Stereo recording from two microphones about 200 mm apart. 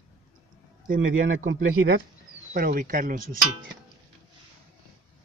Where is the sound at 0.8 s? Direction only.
45° right (ahead or behind).